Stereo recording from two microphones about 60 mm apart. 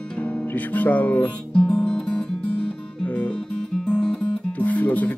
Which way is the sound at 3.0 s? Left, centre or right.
Left.